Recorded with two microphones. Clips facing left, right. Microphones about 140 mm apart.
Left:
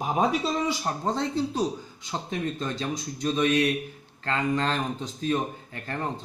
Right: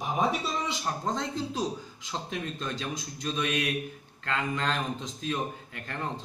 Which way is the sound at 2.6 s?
40° left (ahead or behind).